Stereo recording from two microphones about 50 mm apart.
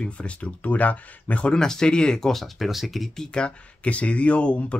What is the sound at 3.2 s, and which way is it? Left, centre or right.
Speech, centre.